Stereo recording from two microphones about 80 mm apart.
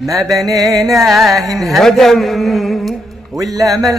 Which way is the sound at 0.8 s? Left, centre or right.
Centre.